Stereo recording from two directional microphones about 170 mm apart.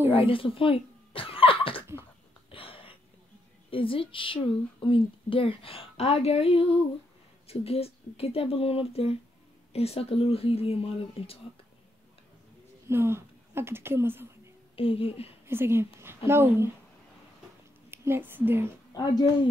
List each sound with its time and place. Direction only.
0.1 s speech: 30° left (ahead or behind)
2.5 s a sound: 30° left (ahead or behind)
3.7 s a woman's voice: 30° left (ahead or behind)
12.8 s speech: 15° right (ahead or behind)
14.8 s a woman's voice: 35° left (ahead or behind)
15.4 s speech: 15° right (ahead or behind)
17.9 s a woman's voice: 15° right (ahead or behind)
19.0 s speech: 25° left (ahead or behind)